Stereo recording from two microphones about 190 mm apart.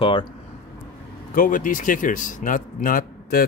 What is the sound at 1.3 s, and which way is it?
Speech, 45° left (ahead or behind).